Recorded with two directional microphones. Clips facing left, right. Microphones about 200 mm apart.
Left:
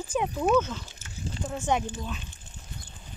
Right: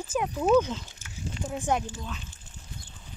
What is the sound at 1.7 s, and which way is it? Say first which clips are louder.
Speech: left 1 dB; 5° right (ahead or behind).